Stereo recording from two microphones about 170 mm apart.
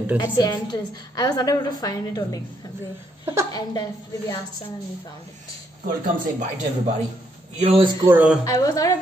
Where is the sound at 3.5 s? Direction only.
25° left (ahead or behind).